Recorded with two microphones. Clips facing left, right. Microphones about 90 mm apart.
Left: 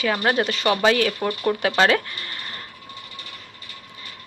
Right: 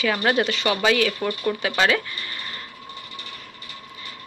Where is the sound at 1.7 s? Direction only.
40° left (ahead or behind).